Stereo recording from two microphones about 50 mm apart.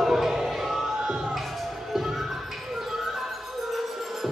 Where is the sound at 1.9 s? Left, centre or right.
Centre.